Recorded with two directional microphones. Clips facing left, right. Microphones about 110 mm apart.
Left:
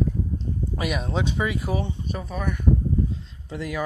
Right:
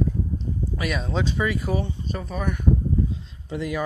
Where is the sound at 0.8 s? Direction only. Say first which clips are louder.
Even; 20° left (ahead or behind).